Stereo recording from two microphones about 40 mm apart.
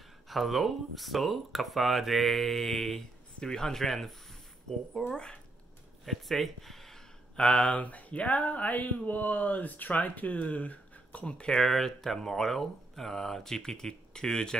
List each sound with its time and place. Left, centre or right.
0.3 s speech: centre
3.3 s speech: centre
5.1 s speech: left
6.0 s speech: centre
7.3 s speech: left
11.6 s speech: centre